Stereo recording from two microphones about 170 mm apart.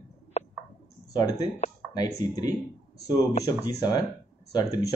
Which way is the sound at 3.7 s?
25° left (ahead or behind).